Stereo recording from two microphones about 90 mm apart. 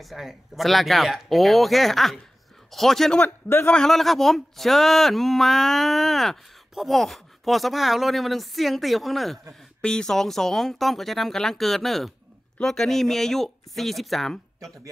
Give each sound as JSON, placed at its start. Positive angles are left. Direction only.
{"t": 0.0, "sound": "speech", "side_deg": 0}
{"t": 3.2, "sound": "a man's voice", "side_deg": 25}
{"t": 3.7, "sound": "speech", "side_deg": 5}